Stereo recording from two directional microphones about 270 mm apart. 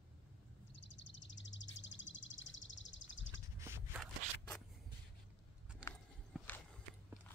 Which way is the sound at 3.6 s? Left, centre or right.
Centre.